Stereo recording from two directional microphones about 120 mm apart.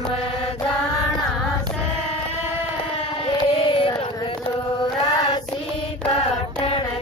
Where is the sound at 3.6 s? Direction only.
45° left (ahead or behind).